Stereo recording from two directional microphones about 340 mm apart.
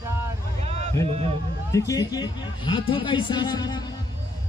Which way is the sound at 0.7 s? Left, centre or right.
Centre.